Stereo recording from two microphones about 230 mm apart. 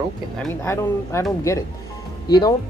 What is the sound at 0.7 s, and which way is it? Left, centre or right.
Speech, centre.